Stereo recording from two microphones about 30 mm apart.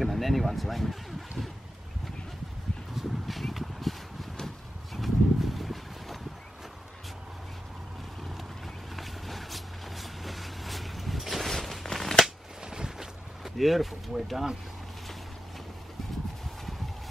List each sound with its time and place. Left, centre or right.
0.0 s speech: centre
2.9 s a sound: centre
8.9 s vehicle: centre
11.5 s a sound: centre
12.6 s boat: right
13.4 s speech: centre